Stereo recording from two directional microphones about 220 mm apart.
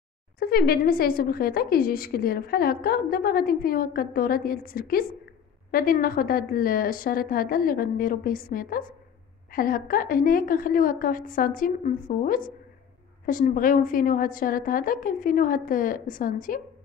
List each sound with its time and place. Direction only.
0.4 s a woman's voice: 45° left (ahead or behind)